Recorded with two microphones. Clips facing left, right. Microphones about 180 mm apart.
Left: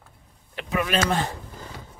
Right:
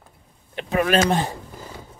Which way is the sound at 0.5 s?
30° right (ahead or behind).